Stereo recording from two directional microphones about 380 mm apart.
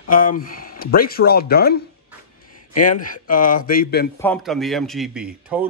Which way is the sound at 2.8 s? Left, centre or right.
Left.